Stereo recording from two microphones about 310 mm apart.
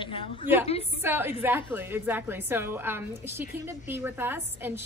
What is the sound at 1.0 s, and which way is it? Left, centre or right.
A woman's voice, centre.